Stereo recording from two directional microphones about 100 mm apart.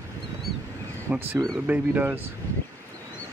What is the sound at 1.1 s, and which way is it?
Speech, 15° right (ahead or behind).